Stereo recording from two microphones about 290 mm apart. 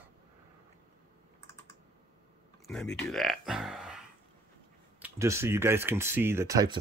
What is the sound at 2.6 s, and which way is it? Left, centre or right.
Speech, centre.